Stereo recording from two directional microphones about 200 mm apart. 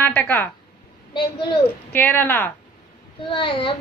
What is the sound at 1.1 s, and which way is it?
Speech, 25° left (ahead or behind).